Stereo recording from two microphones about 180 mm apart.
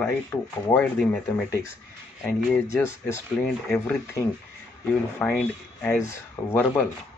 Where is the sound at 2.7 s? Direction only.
15° left (ahead or behind).